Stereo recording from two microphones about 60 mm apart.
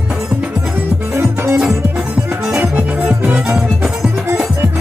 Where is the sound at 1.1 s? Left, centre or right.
Right.